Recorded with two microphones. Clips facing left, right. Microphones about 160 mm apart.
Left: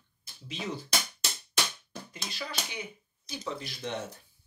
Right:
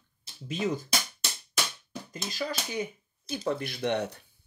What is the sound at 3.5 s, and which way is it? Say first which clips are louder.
Speech: right 7 dB; 60° right (ahead or behind).